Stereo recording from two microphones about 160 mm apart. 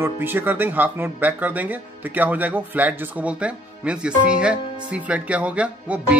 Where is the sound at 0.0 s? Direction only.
15° right (ahead or behind).